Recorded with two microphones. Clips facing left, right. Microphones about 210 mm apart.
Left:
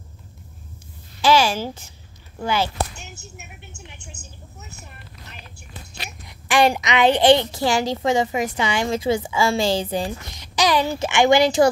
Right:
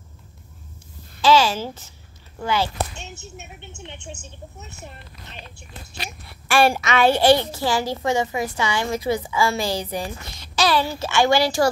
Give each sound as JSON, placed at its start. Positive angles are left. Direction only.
{"t": 1.2, "sound": "a child's voice", "side_deg": 10}
{"t": 3.0, "sound": "speech", "side_deg": -25}
{"t": 6.2, "sound": "a child's voice", "side_deg": 15}
{"t": 10.3, "sound": "a child's voice", "side_deg": 15}